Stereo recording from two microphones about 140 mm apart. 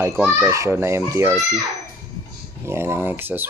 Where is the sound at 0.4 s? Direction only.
20° right (ahead or behind).